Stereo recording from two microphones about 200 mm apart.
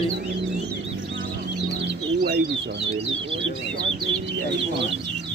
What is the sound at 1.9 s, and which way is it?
Bird, 55° right (ahead or behind).